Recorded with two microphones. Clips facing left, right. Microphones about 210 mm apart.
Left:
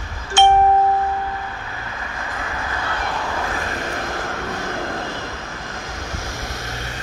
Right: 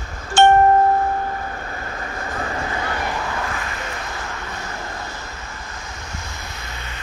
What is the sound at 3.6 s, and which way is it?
Vehicle, 40° left (ahead or behind).